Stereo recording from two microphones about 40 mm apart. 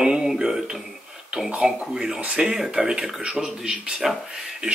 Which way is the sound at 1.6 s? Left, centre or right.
Centre.